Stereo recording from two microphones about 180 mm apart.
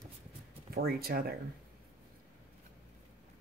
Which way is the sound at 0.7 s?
55° right (ahead or behind).